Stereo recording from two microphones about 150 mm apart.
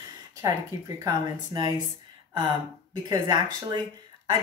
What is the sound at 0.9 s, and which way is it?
Speech, 30° right (ahead or behind).